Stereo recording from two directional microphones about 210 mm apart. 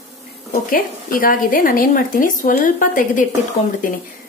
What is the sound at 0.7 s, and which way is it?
A woman's voice, 40° left (ahead or behind).